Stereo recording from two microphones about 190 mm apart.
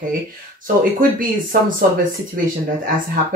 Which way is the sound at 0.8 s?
50° right (ahead or behind).